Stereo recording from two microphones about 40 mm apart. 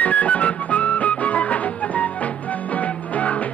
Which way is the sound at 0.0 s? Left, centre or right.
Left.